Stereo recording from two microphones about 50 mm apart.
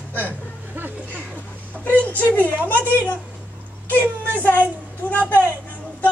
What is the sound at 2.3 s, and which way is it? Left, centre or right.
Speech, left.